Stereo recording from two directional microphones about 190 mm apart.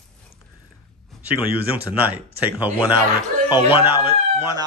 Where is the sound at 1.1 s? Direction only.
Centre (ahead or behind).